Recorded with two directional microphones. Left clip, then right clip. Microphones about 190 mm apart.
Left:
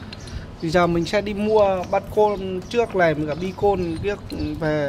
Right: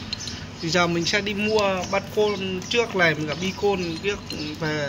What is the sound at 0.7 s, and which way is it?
Speech, 55° left (ahead or behind).